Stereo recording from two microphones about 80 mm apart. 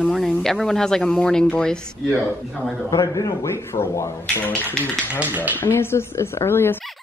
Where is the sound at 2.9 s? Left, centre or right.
Left.